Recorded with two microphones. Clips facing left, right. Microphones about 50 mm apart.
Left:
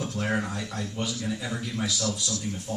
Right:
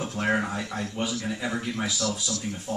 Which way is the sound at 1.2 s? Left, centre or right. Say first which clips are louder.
Right 2 dB; right.